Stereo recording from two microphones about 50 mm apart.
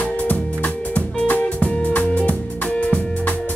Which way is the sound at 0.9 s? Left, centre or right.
Left.